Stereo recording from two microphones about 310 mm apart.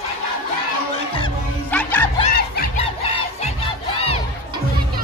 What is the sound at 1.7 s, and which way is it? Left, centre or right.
Music, centre.